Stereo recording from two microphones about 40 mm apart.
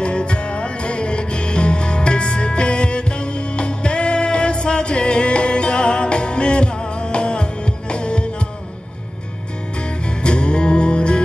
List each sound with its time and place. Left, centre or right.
0.0 s music: left
10.0 s music: left